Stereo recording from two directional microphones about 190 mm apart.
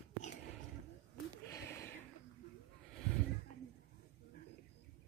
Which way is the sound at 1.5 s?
15° left (ahead or behind).